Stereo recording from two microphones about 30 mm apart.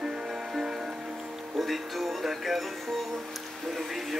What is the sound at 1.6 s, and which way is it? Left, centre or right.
Music, centre.